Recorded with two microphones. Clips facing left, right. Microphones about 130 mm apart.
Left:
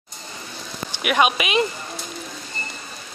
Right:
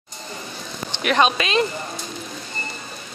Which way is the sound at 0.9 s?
10° left (ahead or behind).